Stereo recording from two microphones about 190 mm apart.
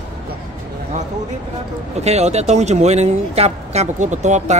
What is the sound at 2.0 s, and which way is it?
Speech, 35° right (ahead or behind).